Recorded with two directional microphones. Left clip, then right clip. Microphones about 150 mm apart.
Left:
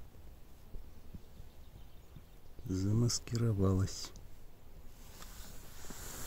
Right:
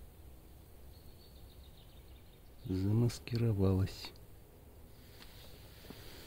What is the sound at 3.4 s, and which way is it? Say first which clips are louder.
Speech: right 1 dB; 10° left (ahead or behind).